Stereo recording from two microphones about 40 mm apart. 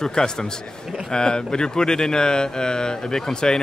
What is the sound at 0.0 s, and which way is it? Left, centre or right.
Speech, centre.